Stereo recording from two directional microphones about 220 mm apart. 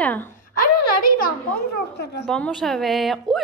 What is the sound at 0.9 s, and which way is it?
Speech, 40° left (ahead or behind).